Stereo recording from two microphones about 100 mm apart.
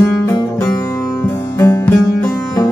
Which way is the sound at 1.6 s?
20° left (ahead or behind).